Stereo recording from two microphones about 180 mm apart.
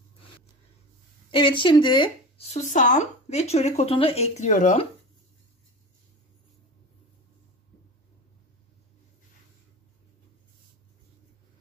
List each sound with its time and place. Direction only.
1.3 s speech: 30° left (ahead or behind); by 4.8 s 45° left (ahead or behind)